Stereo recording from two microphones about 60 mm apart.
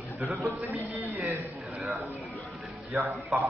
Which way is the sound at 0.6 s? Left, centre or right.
Right.